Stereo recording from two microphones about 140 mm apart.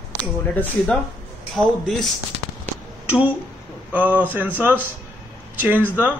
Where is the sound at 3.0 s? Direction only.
10° right (ahead or behind).